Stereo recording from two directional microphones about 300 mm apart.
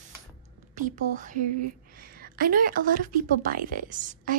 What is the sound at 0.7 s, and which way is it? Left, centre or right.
A woman's voice, right.